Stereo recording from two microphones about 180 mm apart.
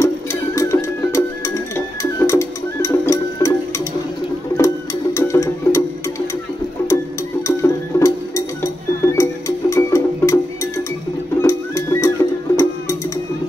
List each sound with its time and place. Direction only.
0.0 s music: 15° left (ahead or behind)